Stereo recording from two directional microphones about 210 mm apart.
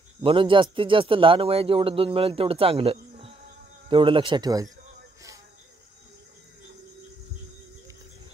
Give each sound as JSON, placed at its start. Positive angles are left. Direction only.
{"t": 0.2, "sound": "speech", "side_deg": -25}